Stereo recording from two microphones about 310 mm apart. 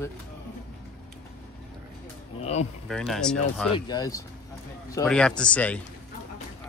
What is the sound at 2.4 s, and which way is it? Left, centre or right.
Speech, left.